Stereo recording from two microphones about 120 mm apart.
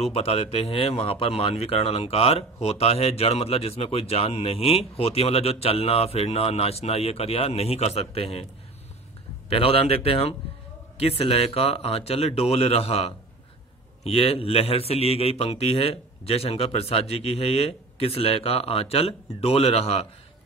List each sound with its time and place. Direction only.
0.0 s speech: 55° left (ahead or behind)
9.5 s speech: 55° left (ahead or behind)